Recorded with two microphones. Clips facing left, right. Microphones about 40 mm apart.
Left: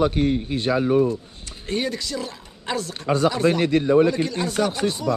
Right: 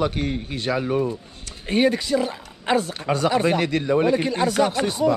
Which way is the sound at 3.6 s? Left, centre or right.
Right.